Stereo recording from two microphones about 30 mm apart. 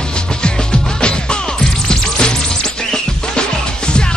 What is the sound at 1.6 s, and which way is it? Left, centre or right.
Music, centre.